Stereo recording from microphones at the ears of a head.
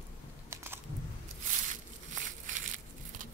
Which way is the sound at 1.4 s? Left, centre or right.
Right.